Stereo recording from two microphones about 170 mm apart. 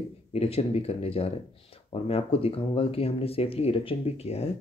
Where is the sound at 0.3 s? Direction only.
35° left (ahead or behind).